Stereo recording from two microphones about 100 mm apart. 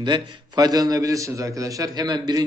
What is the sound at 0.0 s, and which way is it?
A man's voice, 45° right (ahead or behind).